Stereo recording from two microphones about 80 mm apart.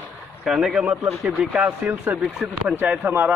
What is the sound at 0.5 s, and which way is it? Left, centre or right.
A man's voice, centre.